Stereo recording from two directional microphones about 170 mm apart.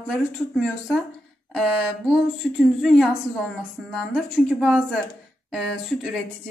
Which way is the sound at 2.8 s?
Centre (ahead or behind).